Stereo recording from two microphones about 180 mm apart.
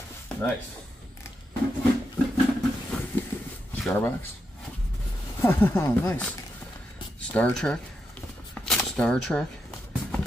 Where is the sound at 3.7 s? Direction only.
10° left (ahead or behind).